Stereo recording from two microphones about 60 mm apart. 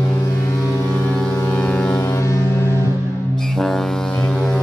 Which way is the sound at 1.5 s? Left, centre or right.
Left.